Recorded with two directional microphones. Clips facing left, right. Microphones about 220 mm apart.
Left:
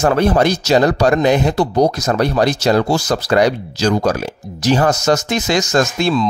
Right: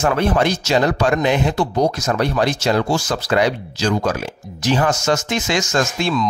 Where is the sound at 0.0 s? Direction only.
40° left (ahead or behind).